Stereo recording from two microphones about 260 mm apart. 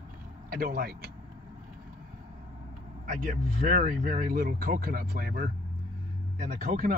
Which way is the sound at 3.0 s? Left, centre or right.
Right.